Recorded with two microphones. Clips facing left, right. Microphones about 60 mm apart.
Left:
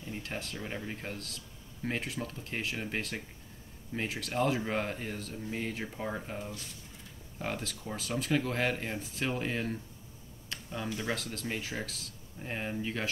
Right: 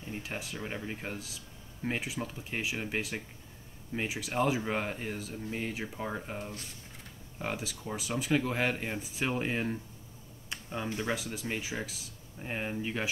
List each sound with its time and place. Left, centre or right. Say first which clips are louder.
0.0 s speech: even; centre
7.3 s speech: even; centre
10.5 s a sound: right 1 dB; centre
11.1 s speech: right 1 dB; centre